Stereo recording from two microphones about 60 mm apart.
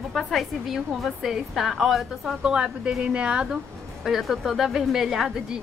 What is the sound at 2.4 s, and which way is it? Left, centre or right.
Speech, centre.